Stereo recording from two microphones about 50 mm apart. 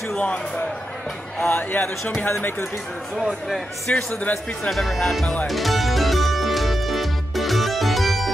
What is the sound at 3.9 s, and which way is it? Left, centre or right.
Speech, left.